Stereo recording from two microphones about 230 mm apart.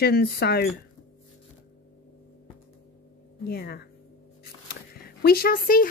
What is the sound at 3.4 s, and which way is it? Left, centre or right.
Speech, left.